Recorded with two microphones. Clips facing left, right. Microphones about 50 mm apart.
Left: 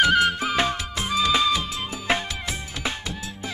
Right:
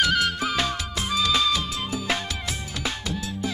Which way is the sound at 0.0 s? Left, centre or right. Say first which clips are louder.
Left 3 dB; left.